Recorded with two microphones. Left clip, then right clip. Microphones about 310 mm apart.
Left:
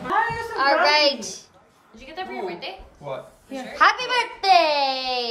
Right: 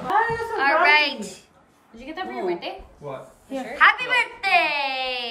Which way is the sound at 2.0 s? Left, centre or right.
Right.